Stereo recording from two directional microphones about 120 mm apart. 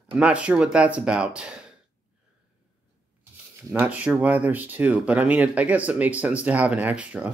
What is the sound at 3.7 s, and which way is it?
Speech, 10° right (ahead or behind).